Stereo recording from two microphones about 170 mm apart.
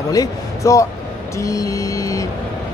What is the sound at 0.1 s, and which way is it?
Speech, 20° left (ahead or behind).